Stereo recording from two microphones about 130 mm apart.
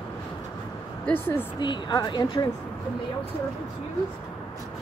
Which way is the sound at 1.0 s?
15° left (ahead or behind).